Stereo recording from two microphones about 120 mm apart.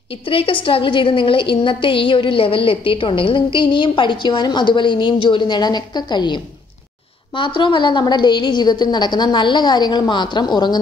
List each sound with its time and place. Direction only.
0.3 s a woman's voice: 50° left (ahead or behind)